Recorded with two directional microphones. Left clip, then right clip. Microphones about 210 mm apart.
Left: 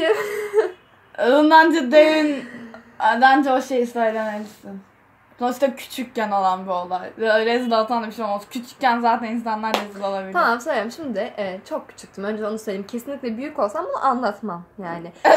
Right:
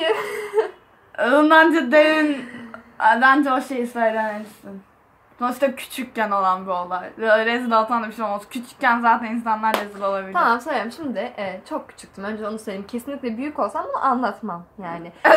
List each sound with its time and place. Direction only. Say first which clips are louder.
0.0 s a sound: left 2 dB; 15° left (ahead or behind)
1.1 s speech: left 1 dB; 5° right (ahead or behind)
5.4 s speech: even; 5° right (ahead or behind)
10.3 s a woman's voice: left 1 dB; 15° left (ahead or behind)